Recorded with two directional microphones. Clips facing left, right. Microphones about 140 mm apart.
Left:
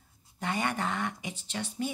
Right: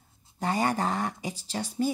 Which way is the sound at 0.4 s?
35° right (ahead or behind).